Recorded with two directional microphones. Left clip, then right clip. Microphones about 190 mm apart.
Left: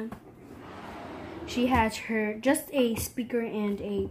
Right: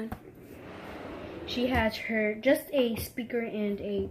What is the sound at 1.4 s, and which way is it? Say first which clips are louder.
A woman's voice: left 3 dB; 30° left (ahead or behind).